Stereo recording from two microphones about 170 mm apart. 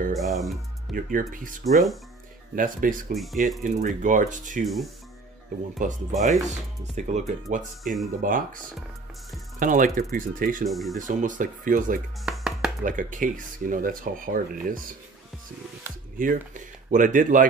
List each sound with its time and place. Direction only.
0.1 s speech: centre (ahead or behind)
0.9 s speech: 55° right (ahead or behind)
1.7 s speech: centre (ahead or behind)
2.5 s speech: 50° right (ahead or behind)
5.8 s speech: 50° right (ahead or behind)
7.8 s speech: centre (ahead or behind)
8.2 s speech: 55° right (ahead or behind)
10.6 s speech: centre (ahead or behind)
11.0 s speech: 50° right (ahead or behind)
12.3 s chopping: centre (ahead or behind)
12.8 s speech: 50° right (ahead or behind)
16.2 s speech: 50° right (ahead or behind)